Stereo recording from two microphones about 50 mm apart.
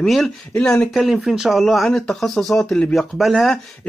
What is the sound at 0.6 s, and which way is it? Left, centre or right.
Speech, centre.